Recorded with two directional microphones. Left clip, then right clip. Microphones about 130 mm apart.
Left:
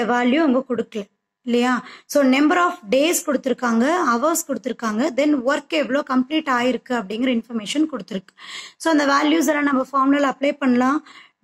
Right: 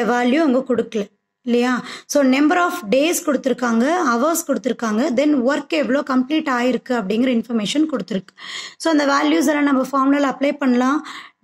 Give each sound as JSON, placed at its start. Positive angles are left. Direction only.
{"t": 0.0, "sound": "a woman's voice", "side_deg": -40}